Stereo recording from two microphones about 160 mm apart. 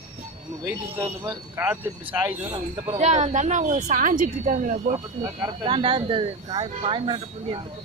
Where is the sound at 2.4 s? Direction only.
30° right (ahead or behind).